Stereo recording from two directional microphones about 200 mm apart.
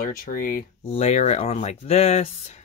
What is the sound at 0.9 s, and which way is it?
Speech, 35° left (ahead or behind).